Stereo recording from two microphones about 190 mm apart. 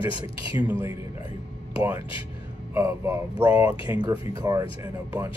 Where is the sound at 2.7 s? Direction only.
15° right (ahead or behind).